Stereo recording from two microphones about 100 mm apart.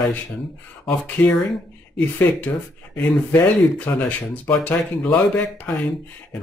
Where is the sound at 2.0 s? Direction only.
20° left (ahead or behind).